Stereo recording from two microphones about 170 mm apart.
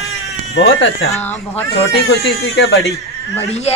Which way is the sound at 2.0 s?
65° left (ahead or behind).